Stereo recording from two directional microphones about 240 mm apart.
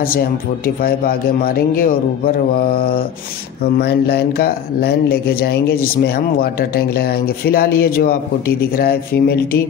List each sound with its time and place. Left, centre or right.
0.7 s speech: left